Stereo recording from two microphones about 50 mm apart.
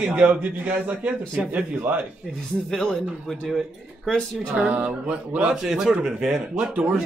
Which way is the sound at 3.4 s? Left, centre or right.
Centre.